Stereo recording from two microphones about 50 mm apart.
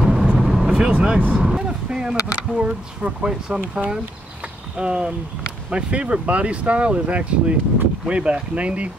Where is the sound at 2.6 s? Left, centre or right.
Centre.